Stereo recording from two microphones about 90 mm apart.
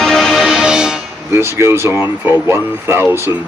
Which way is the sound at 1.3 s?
30° right (ahead or behind).